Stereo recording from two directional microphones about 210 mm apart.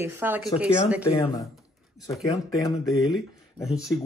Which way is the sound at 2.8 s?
Centre (ahead or behind).